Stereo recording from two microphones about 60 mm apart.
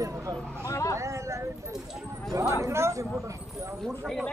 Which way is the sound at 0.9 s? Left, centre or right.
Right.